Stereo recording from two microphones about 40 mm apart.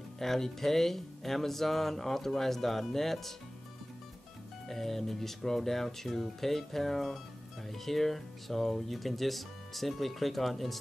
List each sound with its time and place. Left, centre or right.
0.2 s speech: centre
4.6 s speech: centre